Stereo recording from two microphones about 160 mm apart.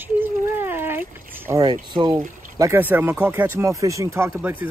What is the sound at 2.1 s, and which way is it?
Speech, 15° right (ahead or behind).